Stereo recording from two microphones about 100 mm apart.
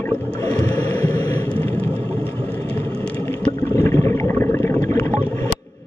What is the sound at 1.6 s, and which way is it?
Vehicle, 15° left (ahead or behind).